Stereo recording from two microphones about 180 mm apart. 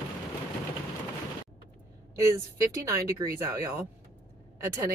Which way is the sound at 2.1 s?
15° right (ahead or behind).